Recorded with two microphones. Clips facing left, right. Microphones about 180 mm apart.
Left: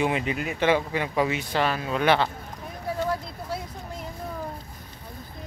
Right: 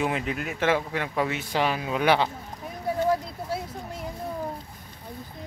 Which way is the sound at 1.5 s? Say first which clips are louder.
Even; 10° right (ahead or behind).